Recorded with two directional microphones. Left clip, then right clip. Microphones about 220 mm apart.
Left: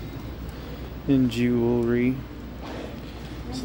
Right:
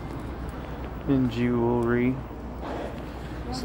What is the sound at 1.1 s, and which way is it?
Speech, 35° left (ahead or behind).